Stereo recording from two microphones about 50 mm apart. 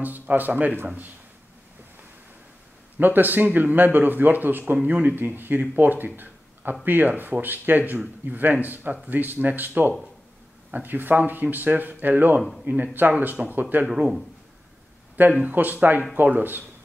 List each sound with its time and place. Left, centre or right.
0.0 s speech: right
3.0 s speech: right
13.8 s speech: centre
15.2 s speech: right